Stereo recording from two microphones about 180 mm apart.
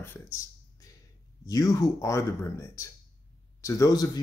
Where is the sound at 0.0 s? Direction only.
15° left (ahead or behind).